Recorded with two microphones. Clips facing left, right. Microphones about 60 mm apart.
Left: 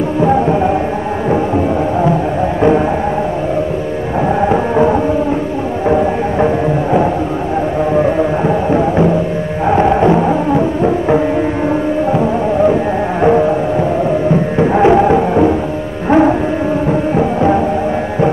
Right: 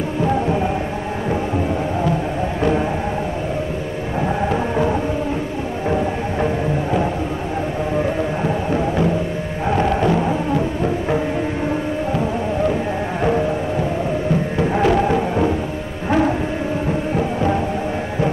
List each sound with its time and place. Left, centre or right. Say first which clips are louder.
0.2 s music: left 7 dB; left
4.4 s music: left 9 dB; left